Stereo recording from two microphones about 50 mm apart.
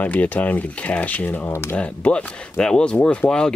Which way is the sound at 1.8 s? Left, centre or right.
Left.